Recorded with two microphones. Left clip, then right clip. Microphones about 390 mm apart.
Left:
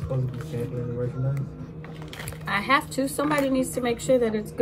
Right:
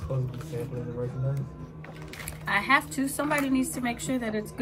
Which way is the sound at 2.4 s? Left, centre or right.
Centre.